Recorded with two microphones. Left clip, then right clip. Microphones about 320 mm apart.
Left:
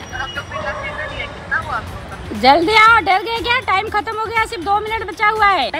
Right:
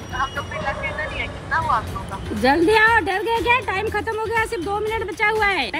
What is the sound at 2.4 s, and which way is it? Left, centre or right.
Speech, centre.